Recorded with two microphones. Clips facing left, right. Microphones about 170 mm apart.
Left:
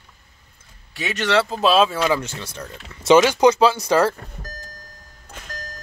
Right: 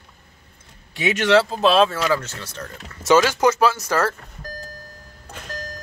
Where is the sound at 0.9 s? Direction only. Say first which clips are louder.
Right 4 dB; 20° right (ahead or behind).